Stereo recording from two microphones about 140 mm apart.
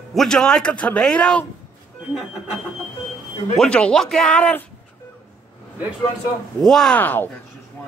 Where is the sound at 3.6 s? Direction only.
5° left (ahead or behind).